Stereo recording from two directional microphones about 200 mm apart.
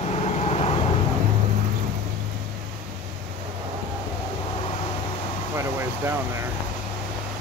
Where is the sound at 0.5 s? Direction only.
30° left (ahead or behind).